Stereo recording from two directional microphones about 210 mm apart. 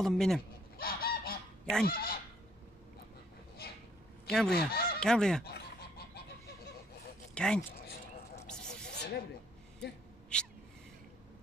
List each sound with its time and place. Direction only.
0.0 s goose: centre (ahead or behind)
0.7 s goose: 45° left (ahead or behind)
4.3 s goose: centre (ahead or behind)
4.6 s goose: 45° left (ahead or behind)
5.0 s goose: 5° left (ahead or behind)
5.4 s goose: 50° left (ahead or behind)
7.3 s speech: 5° left (ahead or behind)
8.4 s a sound: 5° left (ahead or behind)
8.9 s snake: 55° left (ahead or behind)